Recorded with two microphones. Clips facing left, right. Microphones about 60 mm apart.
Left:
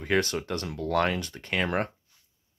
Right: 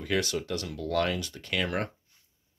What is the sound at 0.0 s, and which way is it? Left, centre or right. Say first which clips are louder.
Speech: left 3 dB; left.